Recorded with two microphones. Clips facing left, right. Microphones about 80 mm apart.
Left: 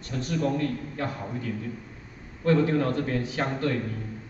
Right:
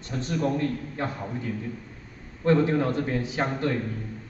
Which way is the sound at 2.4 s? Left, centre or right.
Right.